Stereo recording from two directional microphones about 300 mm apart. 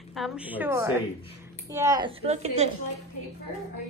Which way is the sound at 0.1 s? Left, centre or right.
Centre.